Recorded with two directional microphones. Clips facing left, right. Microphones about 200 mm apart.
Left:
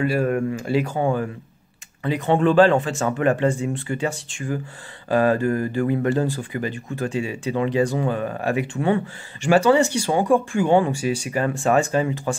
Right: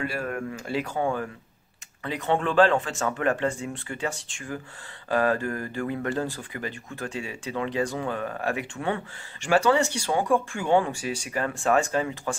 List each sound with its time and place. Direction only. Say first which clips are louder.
0.0 s speech: left 9 dB; 10° left (ahead or behind)
2.0 s speech: left 7 dB; 10° left (ahead or behind)
8.8 s speech: left 7 dB; 10° left (ahead or behind)